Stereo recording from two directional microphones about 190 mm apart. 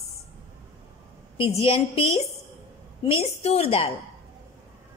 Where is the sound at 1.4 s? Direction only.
30° left (ahead or behind).